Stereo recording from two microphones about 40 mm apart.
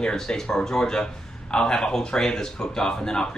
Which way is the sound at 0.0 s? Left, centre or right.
Centre.